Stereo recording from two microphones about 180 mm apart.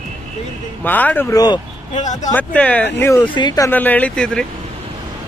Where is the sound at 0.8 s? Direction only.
10° left (ahead or behind).